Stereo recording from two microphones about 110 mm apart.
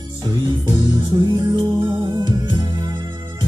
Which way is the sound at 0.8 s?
40° right (ahead or behind).